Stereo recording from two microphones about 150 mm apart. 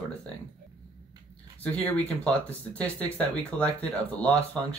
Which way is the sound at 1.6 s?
10° left (ahead or behind).